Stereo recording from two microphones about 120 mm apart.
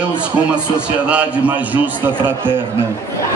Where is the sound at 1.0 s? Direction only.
10° right (ahead or behind).